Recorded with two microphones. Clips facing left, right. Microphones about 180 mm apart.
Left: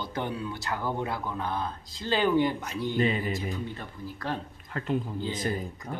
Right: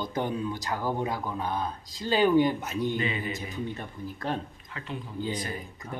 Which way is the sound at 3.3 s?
20° right (ahead or behind).